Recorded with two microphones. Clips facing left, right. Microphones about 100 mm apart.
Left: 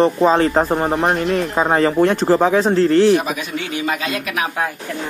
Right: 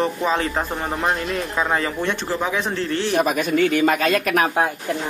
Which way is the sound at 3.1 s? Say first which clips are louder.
Even; 45° right (ahead or behind).